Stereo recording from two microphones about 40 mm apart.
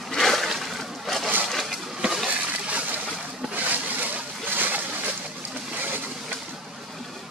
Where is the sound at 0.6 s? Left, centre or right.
Centre.